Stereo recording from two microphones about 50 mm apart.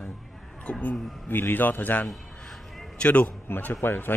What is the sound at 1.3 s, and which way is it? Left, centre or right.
Speech, left.